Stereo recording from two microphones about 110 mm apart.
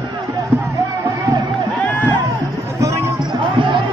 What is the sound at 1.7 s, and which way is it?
Music, 15° left (ahead or behind).